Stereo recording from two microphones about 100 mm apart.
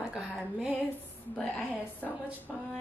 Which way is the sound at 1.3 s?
10° left (ahead or behind).